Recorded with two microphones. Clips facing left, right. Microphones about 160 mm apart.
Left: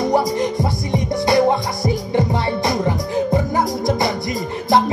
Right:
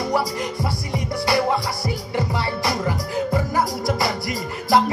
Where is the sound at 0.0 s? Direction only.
20° left (ahead or behind).